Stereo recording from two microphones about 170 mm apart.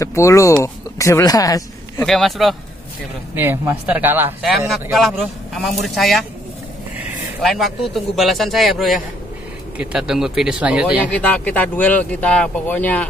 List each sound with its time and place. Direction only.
0.0 s speech: 15° left (ahead or behind)
2.0 s a man's voice: centre (ahead or behind)
3.3 s speech: 10° right (ahead or behind)
4.9 s a man's voice: centre (ahead or behind)
7.4 s a man's voice: centre (ahead or behind)
11.0 s speech: 10° left (ahead or behind)